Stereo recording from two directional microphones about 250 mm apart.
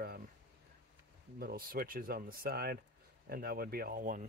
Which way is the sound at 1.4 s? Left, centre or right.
Right.